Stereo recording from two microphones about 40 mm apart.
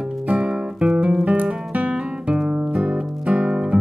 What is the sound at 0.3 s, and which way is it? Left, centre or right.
Music, right.